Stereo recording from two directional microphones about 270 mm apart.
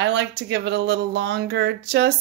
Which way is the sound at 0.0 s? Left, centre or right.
Right.